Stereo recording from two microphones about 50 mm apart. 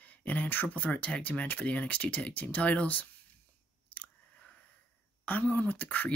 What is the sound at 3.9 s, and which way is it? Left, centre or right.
Chewing, left.